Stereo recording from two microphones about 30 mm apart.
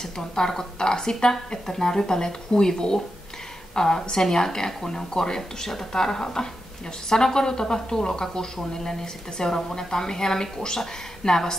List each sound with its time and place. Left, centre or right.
0.0 s a woman's voice: centre